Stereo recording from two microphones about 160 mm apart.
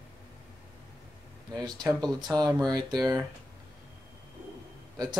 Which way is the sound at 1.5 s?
25° right (ahead or behind).